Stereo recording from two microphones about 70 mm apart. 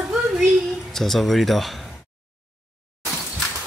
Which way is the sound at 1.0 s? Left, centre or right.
Centre.